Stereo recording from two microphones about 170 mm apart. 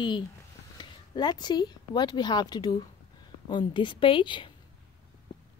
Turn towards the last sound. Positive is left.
turn(degrees=30)  # may be behind; listen again after turning